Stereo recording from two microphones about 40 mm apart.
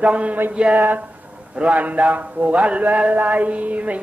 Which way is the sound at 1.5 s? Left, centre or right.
Right.